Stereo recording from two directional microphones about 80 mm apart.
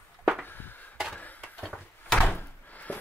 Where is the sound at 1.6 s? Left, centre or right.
Centre.